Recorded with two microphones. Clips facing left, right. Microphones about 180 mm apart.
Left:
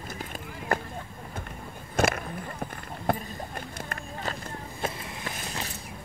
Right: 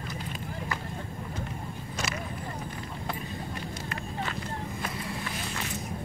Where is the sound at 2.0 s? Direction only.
55° left (ahead or behind).